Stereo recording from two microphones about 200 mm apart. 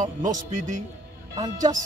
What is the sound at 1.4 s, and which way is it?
Speech, 20° right (ahead or behind).